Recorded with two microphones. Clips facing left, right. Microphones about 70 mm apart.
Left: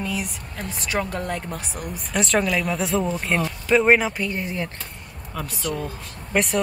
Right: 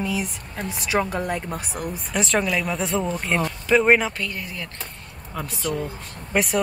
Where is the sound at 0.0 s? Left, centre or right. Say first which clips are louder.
Right 2 dB; centre.